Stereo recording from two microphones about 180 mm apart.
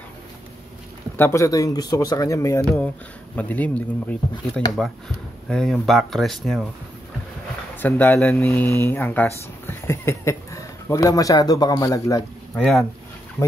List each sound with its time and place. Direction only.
1.1 s speech: 15° left (ahead or behind)
7.7 s speech: 10° left (ahead or behind)
12.5 s speech: centre (ahead or behind)